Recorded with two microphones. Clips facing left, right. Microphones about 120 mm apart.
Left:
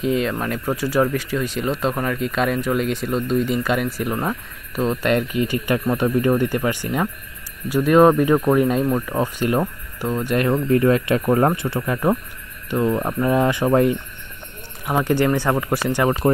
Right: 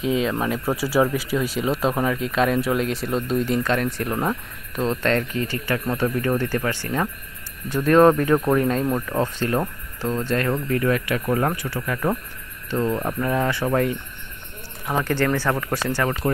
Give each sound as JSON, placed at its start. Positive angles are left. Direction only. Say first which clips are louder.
{"t": 0.0, "sound": "speech", "louder": "left 1 dB", "side_deg": 0}
{"t": 10.7, "sound": "speech", "louder": "left 7 dB", "side_deg": 25}